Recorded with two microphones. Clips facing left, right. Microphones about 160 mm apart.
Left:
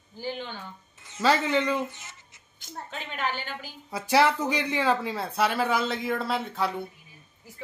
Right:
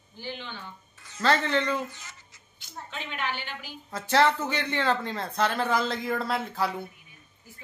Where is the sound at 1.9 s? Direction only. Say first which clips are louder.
Even; 25° left (ahead or behind).